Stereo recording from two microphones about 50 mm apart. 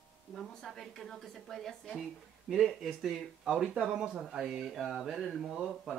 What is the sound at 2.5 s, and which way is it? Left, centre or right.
Speech, centre.